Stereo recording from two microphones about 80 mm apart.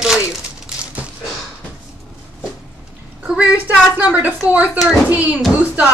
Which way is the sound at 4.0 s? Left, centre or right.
Right.